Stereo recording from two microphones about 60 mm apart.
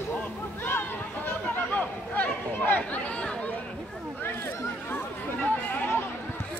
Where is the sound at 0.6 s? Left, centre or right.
Left.